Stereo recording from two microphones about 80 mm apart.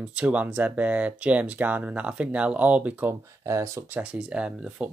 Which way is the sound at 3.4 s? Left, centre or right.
Right.